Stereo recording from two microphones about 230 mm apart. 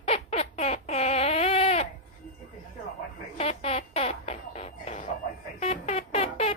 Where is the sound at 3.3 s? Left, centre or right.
Left.